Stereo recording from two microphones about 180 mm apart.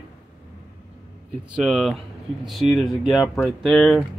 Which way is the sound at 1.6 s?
Centre (ahead or behind).